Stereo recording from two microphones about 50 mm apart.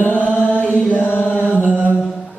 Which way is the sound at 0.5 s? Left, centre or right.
Left.